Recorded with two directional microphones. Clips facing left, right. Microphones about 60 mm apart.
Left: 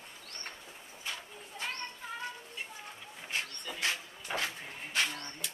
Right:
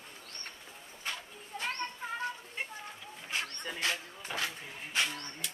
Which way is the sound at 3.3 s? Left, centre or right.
Right.